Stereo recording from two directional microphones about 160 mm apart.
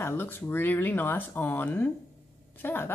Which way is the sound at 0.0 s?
15° left (ahead or behind).